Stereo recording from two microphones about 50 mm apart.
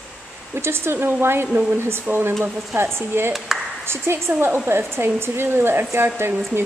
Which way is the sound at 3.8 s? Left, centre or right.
Right.